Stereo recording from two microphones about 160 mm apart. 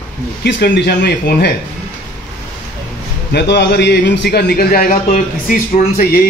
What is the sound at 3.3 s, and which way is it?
A man's voice, 90° left.